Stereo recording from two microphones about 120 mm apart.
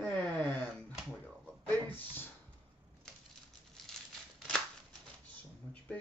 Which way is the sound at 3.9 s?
5° left (ahead or behind).